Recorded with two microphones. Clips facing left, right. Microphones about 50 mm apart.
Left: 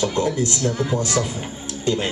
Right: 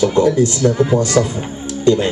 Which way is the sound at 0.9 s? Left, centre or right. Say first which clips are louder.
Right 8 dB; right.